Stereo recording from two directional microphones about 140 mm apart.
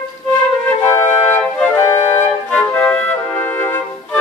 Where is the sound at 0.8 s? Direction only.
20° left (ahead or behind).